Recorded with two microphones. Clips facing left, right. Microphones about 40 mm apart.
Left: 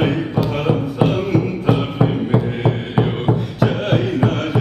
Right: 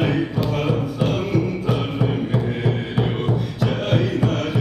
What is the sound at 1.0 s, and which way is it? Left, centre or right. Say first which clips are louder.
Music: left 3 dB; centre.